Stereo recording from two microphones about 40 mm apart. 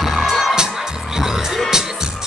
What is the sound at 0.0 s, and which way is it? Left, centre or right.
Music, centre.